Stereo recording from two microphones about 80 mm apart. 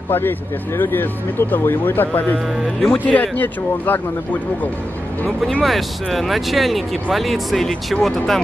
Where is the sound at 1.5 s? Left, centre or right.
Left.